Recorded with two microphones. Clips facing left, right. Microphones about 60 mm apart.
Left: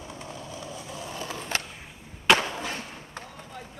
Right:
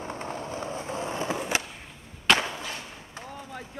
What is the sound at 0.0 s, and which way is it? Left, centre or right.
Skateboard, right.